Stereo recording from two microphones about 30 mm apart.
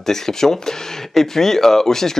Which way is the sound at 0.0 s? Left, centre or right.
Centre.